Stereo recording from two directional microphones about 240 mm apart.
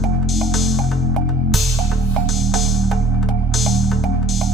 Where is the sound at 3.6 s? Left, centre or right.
Centre.